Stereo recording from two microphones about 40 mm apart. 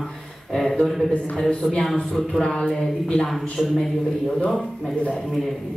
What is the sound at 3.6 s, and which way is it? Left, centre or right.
Speech, centre.